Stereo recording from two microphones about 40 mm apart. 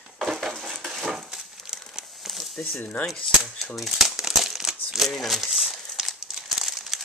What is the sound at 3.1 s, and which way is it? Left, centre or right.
Speech, centre.